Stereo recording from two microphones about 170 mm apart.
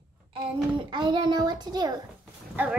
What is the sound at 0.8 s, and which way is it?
A child's voice, 25° right (ahead or behind).